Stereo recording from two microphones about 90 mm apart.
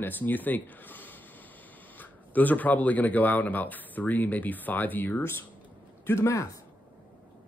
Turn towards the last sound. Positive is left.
turn(degrees=30)  # may be behind; listen again after turning